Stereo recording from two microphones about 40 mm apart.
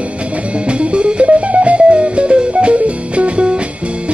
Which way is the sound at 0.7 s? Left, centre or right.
Right.